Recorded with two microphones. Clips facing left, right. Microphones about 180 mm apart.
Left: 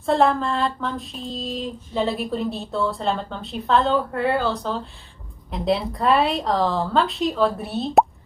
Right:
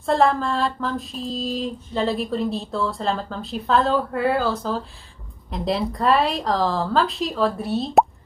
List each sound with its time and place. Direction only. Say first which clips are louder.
0.0 s female singing: even; centre (ahead or behind)